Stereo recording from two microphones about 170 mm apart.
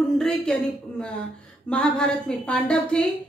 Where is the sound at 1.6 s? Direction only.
5° left (ahead or behind).